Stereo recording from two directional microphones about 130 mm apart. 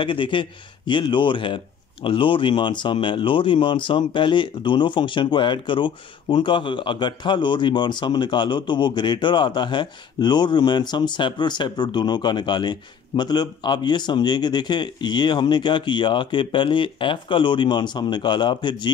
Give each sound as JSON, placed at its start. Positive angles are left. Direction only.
{"t": 0.0, "sound": "speech", "side_deg": 40}